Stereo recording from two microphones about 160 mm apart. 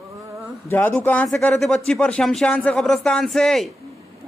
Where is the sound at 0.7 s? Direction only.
10° left (ahead or behind).